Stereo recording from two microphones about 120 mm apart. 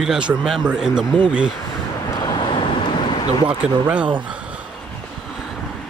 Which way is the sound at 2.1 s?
35° left (ahead or behind).